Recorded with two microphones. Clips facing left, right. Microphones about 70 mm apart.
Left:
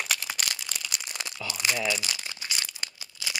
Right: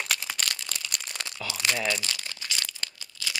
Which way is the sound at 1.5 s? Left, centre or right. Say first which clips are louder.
Even; centre.